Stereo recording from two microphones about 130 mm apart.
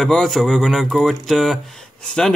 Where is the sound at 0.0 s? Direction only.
5° left (ahead or behind).